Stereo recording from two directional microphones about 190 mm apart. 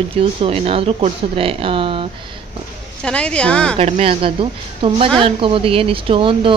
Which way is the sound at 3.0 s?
5° left (ahead or behind).